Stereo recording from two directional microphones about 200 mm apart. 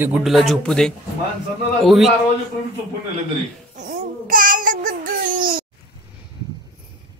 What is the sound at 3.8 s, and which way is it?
Babbling, 45° right (ahead or behind).